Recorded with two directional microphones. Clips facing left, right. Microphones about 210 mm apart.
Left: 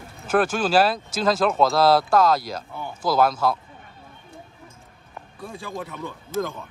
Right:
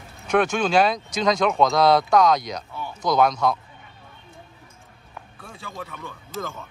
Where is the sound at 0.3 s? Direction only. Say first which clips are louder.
Even; 5° left (ahead or behind).